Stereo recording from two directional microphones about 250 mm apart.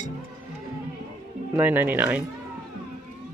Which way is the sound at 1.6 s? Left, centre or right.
Centre.